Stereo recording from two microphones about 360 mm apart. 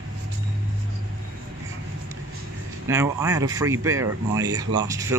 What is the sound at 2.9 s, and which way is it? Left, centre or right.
Speech, centre.